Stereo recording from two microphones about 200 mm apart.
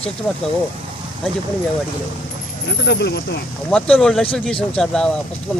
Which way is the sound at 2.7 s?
55° left (ahead or behind).